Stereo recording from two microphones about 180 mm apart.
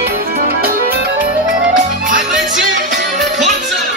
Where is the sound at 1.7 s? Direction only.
45° right (ahead or behind).